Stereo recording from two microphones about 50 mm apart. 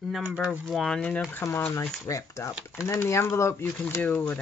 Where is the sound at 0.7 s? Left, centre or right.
Centre.